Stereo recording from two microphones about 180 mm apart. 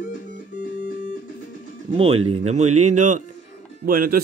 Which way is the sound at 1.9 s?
35° right (ahead or behind).